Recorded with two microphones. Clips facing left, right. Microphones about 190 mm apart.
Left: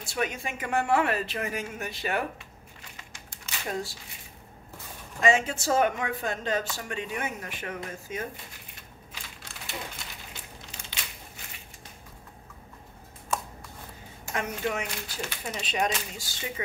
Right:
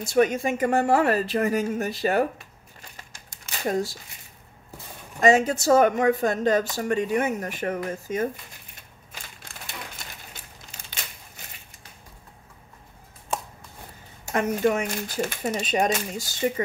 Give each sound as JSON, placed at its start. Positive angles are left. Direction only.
{"t": 0.0, "sound": "speech", "side_deg": -45}
{"t": 5.2, "sound": "speech", "side_deg": -40}
{"t": 14.3, "sound": "speech", "side_deg": -45}